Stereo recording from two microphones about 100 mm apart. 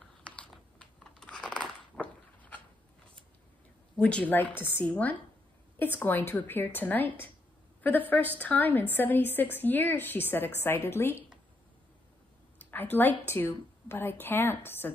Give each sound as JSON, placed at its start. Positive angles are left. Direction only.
{"t": 0.2, "sound": "a sound", "side_deg": 10}
{"t": 4.0, "sound": "a woman's voice", "side_deg": 10}
{"t": 12.5, "sound": "a woman's voice", "side_deg": 20}